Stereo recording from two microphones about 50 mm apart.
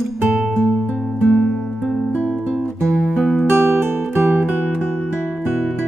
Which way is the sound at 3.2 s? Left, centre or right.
Centre.